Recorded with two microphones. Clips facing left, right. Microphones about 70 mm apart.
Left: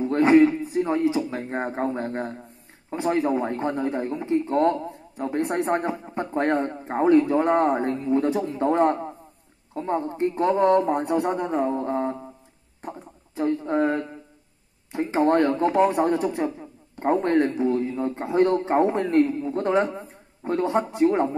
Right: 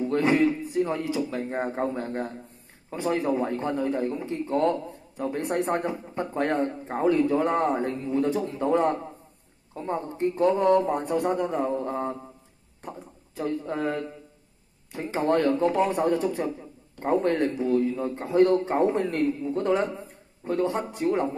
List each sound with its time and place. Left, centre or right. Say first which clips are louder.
0.0 s a sound: left 5 dB; left
0.4 s speech: left 4 dB; centre
6.8 s speech: left 6 dB; left
7.4 s speech: left 4 dB; left
9.8 s speech: left 4 dB; centre
10.0 s speech: right 2 dB; left
13.4 s speech: left 6 dB; left